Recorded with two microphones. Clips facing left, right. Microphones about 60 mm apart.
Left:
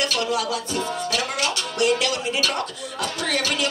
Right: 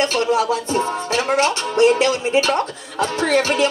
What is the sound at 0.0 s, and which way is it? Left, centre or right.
Music, right.